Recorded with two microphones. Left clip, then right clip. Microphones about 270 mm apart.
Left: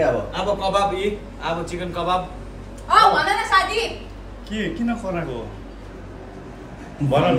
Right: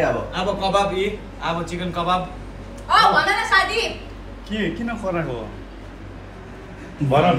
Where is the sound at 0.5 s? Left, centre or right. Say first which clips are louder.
Right 1 dB; centre.